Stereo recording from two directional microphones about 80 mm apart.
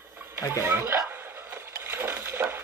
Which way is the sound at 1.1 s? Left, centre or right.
Right.